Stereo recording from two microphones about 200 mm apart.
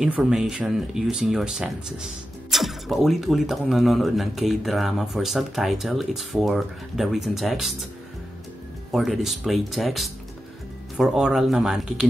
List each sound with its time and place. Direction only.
0.0 s speech: 5° right (ahead or behind)
8.9 s speech: centre (ahead or behind)